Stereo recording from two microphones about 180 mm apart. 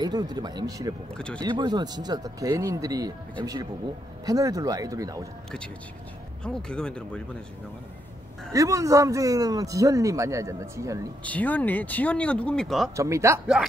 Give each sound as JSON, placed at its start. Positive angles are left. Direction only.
{"t": 0.0, "sound": "speech", "side_deg": -20}
{"t": 1.1, "sound": "speech", "side_deg": 5}
{"t": 1.4, "sound": "speech", "side_deg": -25}
{"t": 4.3, "sound": "speech", "side_deg": -20}
{"t": 6.4, "sound": "speech", "side_deg": 5}
{"t": 8.5, "sound": "speech", "side_deg": -20}
{"t": 11.2, "sound": "speech", "side_deg": 10}
{"t": 12.9, "sound": "speech", "side_deg": -15}